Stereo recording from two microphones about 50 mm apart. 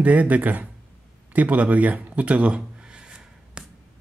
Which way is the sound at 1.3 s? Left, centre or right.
Right.